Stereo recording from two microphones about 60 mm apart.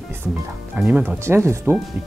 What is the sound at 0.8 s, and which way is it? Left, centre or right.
Speech, right.